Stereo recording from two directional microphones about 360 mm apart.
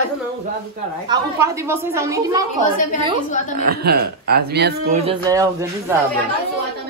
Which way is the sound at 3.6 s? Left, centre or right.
Right.